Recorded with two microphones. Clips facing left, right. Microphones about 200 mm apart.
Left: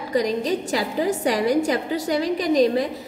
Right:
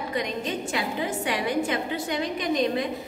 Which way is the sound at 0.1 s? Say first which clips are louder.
Left 9 dB; 40° left (ahead or behind).